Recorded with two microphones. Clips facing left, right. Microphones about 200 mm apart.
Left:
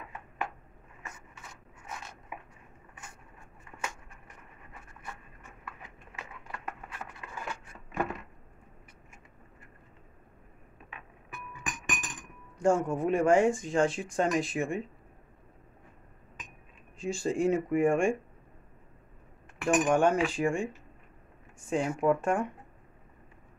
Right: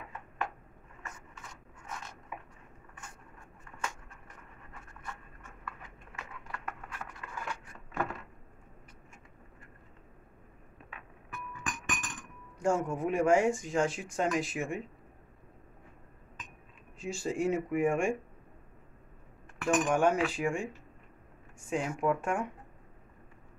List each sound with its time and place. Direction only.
7.9 s a sound: 15° left (ahead or behind)
11.3 s glass: 15° left (ahead or behind)
12.5 s speech: 10° right (ahead or behind)
17.0 s speech: 5° right (ahead or behind)
19.6 s cutlery: 15° left (ahead or behind)
19.9 s speech: 5° right (ahead or behind)